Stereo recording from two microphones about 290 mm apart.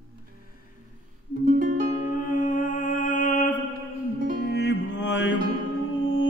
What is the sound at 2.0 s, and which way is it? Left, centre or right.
Music, left.